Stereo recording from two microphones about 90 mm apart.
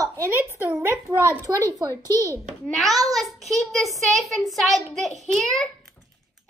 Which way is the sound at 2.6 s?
Centre (ahead or behind).